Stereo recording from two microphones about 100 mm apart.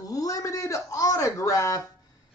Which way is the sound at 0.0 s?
35° left (ahead or behind).